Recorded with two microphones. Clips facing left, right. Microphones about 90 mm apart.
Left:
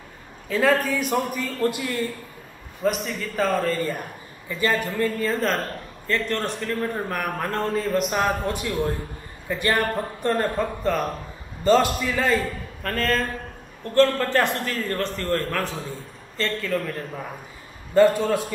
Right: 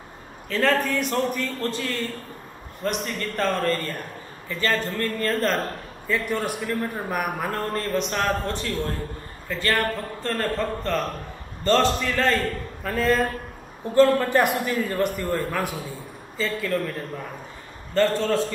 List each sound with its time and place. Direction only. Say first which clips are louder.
0.5 s a man's voice: left 2 dB; 5° left (ahead or behind)
2.8 s a man's voice: left 3 dB; centre (ahead or behind)
12.8 s a man's voice: right 2 dB; 5° right (ahead or behind); by 18.5 s 10° left (ahead or behind)